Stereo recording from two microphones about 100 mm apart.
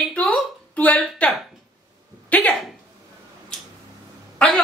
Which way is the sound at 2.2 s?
15° left (ahead or behind).